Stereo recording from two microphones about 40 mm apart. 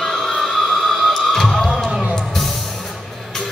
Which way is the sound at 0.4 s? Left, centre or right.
Centre.